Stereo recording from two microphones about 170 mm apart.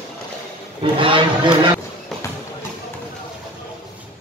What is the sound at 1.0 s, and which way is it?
Speech, 30° right (ahead or behind).